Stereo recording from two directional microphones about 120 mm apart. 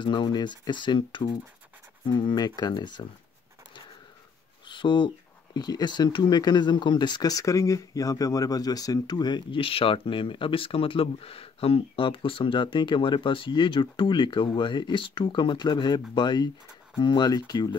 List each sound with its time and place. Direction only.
0.0 s speech: 40° left (ahead or behind)
4.6 s speech: 40° left (ahead or behind)